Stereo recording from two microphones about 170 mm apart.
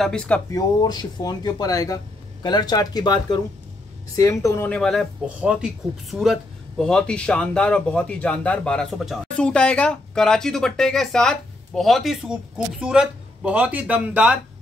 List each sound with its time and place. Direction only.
0.0 s speech: 5° left (ahead or behind)
0.5 s speech: 25° left (ahead or behind); by 14.4 s 5° right (ahead or behind)